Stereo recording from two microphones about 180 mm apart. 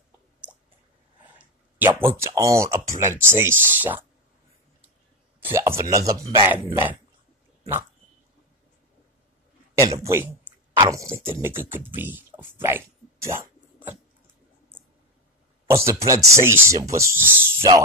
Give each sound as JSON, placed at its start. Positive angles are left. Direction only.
{"t": 1.8, "sound": "speech", "side_deg": -15}
{"t": 5.4, "sound": "speech", "side_deg": -15}
{"t": 9.8, "sound": "a sound", "side_deg": -20}
{"t": 10.8, "sound": "speech", "side_deg": -20}
{"t": 15.6, "sound": "speech", "side_deg": -15}